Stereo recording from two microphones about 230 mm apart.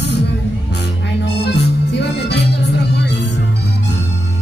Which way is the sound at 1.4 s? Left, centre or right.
Left.